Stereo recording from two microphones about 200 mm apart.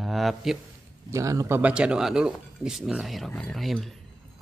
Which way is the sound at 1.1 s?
15° right (ahead or behind).